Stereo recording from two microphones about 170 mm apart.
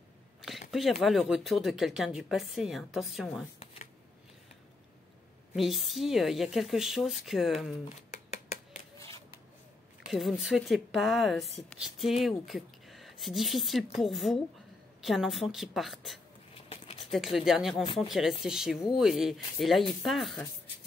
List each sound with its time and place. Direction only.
0.7 s speech: centre (ahead or behind)
5.5 s speech: centre (ahead or behind)
8.3 s a sound: 40° left (ahead or behind)
10.0 s speech: 5° right (ahead or behind)
16.5 s a sound: 35° left (ahead or behind)
17.0 s speech: centre (ahead or behind)